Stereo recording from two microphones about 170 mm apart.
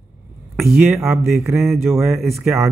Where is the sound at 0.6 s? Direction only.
Centre (ahead or behind).